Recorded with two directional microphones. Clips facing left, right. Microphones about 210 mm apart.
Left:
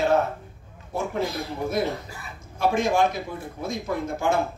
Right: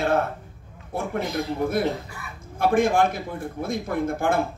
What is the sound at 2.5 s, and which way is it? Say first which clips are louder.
A man's voice: right 2 dB; 55° right (ahead or behind).